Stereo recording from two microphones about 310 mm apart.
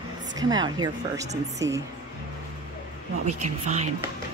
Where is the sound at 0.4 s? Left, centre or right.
Centre.